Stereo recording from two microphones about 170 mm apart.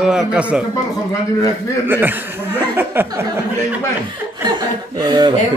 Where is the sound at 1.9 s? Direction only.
10° right (ahead or behind).